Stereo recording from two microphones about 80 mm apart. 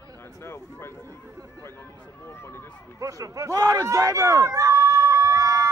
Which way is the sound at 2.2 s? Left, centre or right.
Left.